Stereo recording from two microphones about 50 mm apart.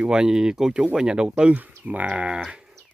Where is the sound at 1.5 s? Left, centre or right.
Right.